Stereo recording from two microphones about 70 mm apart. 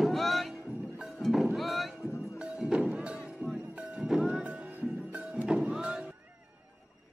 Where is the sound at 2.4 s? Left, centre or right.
Centre.